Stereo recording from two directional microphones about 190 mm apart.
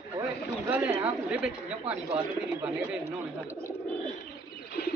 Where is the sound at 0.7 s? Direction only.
10° right (ahead or behind).